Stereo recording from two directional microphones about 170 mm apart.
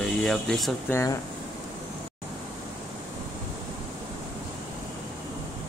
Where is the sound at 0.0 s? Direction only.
5° left (ahead or behind).